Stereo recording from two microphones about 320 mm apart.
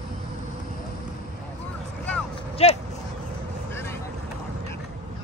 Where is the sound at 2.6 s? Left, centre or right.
Centre.